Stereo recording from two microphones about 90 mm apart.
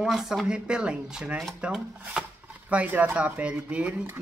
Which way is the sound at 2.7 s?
15° right (ahead or behind).